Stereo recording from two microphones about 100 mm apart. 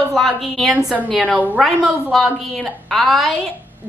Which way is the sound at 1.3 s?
15° right (ahead or behind).